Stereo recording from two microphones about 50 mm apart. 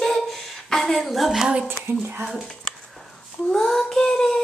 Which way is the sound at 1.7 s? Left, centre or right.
Right.